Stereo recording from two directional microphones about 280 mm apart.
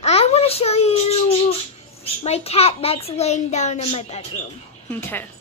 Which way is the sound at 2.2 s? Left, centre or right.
Left.